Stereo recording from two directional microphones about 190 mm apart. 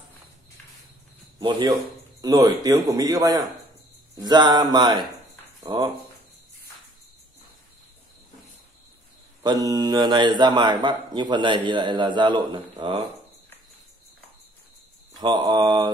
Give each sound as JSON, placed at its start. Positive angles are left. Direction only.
{"t": 1.4, "sound": "speech", "side_deg": -25}
{"t": 9.4, "sound": "speech", "side_deg": -20}
{"t": 15.1, "sound": "speech", "side_deg": -20}